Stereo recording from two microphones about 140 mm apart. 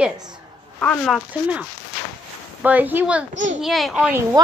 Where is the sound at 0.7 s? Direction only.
5° left (ahead or behind).